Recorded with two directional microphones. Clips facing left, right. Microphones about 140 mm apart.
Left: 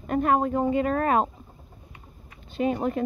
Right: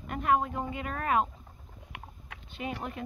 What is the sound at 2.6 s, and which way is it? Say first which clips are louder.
Speech: left 12 dB; 40° left (ahead or behind).